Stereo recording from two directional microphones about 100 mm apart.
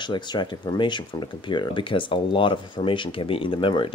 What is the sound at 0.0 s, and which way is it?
Speech, 50° left (ahead or behind).